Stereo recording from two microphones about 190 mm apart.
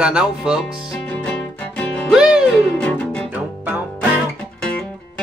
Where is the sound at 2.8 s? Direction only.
5° left (ahead or behind).